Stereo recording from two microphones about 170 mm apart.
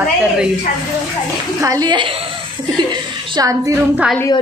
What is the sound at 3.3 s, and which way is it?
Speech, 20° right (ahead or behind).